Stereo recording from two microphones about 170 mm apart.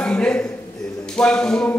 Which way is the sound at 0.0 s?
5° left (ahead or behind).